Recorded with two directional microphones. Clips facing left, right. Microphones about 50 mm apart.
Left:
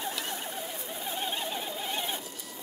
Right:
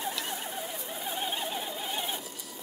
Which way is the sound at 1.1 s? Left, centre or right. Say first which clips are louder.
Even; centre.